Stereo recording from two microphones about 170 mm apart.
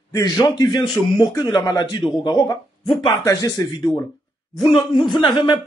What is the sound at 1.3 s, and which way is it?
A man's voice, 25° left (ahead or behind).